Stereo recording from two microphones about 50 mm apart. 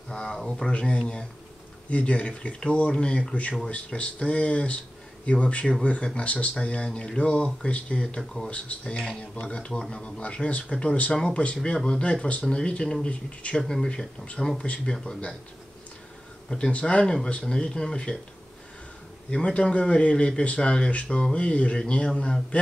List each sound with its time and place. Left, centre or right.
0.1 s speech: centre
13.6 s speech: centre
13.8 s speech: left
16.4 s speech: centre
19.3 s speech: centre